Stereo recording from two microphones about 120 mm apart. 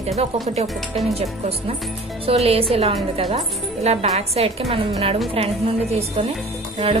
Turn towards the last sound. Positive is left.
turn(degrees=-50)  # may be behind; listen again after turning